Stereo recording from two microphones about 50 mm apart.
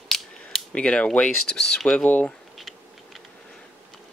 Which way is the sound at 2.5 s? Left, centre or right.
Centre.